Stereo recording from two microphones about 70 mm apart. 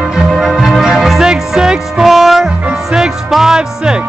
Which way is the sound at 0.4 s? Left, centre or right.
Centre.